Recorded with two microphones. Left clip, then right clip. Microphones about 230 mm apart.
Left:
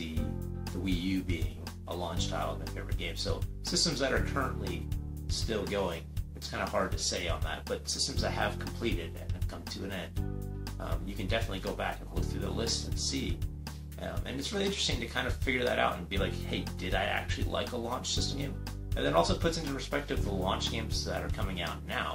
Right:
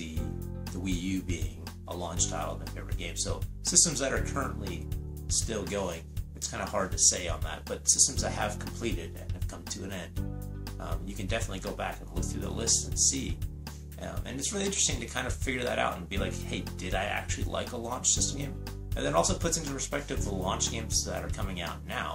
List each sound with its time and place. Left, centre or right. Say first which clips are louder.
0.8 s speech: even; centre